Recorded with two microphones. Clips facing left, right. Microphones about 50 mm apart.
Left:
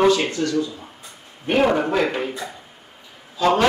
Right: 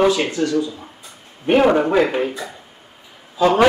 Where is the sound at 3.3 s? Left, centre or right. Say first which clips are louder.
Right 2 dB; centre.